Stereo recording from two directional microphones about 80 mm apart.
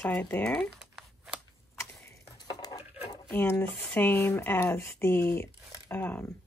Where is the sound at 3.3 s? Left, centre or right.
Left.